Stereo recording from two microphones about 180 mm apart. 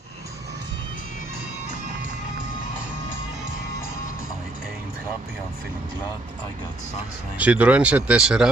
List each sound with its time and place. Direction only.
7.3 s speech: 10° right (ahead or behind)